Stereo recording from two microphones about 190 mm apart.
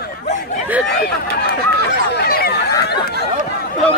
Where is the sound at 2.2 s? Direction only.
55° left (ahead or behind).